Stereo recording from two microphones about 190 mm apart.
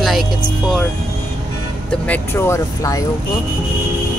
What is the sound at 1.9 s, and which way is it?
Speech, 10° left (ahead or behind).